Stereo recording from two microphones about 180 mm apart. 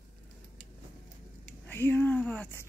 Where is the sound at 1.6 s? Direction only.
10° left (ahead or behind).